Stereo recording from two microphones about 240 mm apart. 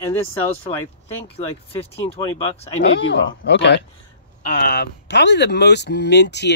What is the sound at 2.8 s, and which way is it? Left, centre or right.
Speech, left.